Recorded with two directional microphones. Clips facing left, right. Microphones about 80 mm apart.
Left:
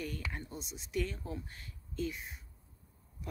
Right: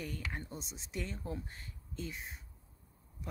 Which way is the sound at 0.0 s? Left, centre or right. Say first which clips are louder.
Left 1 dB; right.